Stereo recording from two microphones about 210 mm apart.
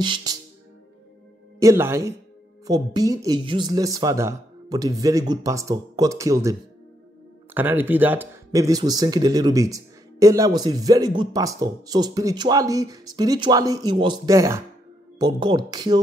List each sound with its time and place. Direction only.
0.0 s speech: 20° right (ahead or behind)
1.6 s speech: 15° right (ahead or behind)
7.5 s speech: 10° right (ahead or behind)